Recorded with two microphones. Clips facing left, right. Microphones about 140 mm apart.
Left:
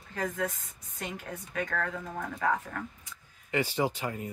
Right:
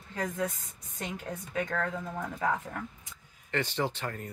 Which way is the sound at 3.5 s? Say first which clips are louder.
Left 2 dB; 10° left (ahead or behind).